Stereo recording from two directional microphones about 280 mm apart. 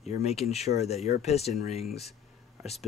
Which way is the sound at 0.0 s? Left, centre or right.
Left.